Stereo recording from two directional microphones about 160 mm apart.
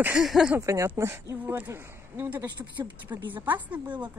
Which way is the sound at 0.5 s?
20° right (ahead or behind).